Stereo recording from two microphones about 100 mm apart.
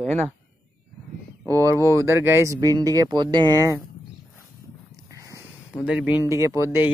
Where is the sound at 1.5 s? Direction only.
30° right (ahead or behind).